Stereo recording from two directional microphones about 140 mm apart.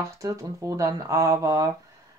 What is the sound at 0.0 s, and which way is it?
Speech, 25° right (ahead or behind).